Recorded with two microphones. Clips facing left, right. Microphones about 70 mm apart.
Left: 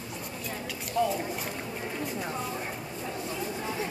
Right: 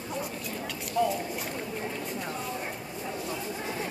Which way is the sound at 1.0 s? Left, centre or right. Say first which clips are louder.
Even; centre.